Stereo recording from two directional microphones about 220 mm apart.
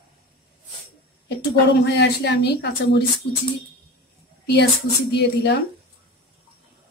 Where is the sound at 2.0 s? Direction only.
50° left (ahead or behind).